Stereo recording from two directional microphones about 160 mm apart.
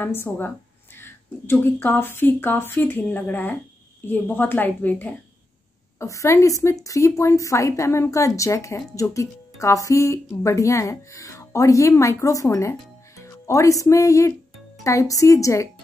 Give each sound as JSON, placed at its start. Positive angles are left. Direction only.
{"t": 0.0, "sound": "a woman's voice", "side_deg": 15}